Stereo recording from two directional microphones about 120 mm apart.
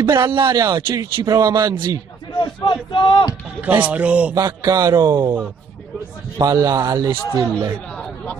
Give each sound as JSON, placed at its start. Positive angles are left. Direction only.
{"t": 0.1, "sound": "speech", "side_deg": -35}
{"t": 2.4, "sound": "speech", "side_deg": 40}
{"t": 3.6, "sound": "speech", "side_deg": -10}
{"t": 4.4, "sound": "speech", "side_deg": -30}
{"t": 6.3, "sound": "speech", "side_deg": -30}